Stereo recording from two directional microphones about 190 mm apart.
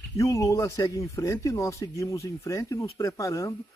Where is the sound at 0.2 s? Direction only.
15° left (ahead or behind).